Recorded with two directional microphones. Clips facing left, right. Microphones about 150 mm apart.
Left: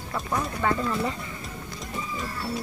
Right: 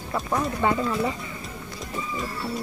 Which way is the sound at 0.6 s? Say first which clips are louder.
Right 2 dB; 20° right (ahead or behind).